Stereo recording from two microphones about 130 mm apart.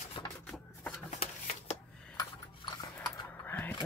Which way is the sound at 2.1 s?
30° left (ahead or behind).